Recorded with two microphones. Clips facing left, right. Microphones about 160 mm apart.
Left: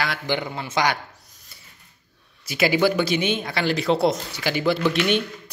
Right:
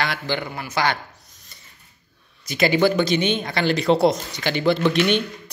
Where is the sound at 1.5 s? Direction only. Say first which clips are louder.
Right 1 dB; 5° left (ahead or behind).